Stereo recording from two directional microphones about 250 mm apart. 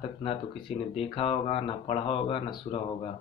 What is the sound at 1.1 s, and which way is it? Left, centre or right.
Speech, left.